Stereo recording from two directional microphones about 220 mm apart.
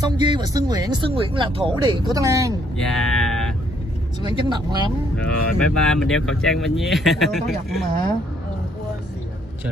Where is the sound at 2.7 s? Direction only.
Centre (ahead or behind).